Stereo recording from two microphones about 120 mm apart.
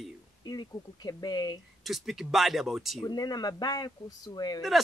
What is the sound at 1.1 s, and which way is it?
Speech, 35° left (ahead or behind).